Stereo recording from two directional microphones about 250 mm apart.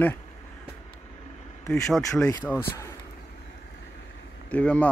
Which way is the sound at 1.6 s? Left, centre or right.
Centre.